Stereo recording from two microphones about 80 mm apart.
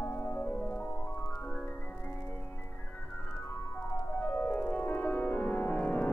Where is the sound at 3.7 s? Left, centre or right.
Left.